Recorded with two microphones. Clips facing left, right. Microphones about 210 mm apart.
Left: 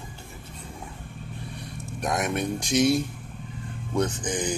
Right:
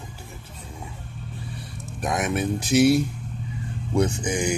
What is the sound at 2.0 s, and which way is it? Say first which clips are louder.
Speech: right 2 dB; centre (ahead or behind).